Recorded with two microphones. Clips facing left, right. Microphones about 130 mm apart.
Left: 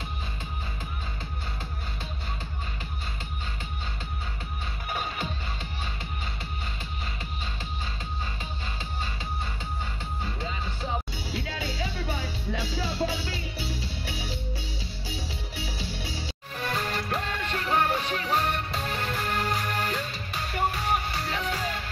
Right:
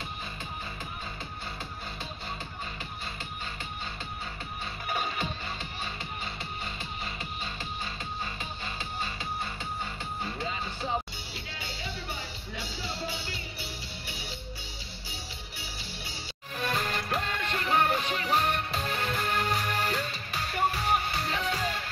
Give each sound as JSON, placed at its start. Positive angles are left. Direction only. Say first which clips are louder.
{"t": 4.8, "sound": "music", "louder": "even", "side_deg": 5}
{"t": 11.4, "sound": "music", "louder": "left 7 dB", "side_deg": 90}
{"t": 15.5, "sound": "music", "louder": "left 8 dB", "side_deg": 90}
{"t": 16.6, "sound": "music", "louder": "left 1 dB", "side_deg": 0}